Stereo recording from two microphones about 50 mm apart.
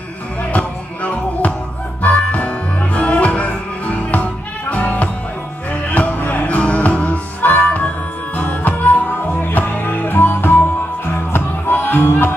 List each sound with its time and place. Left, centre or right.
0.5 s music: left